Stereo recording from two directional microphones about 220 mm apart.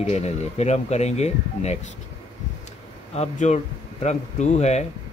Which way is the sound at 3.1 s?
30° left (ahead or behind).